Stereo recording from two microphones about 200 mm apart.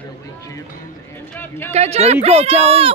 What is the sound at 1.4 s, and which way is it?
Speech, 10° left (ahead or behind).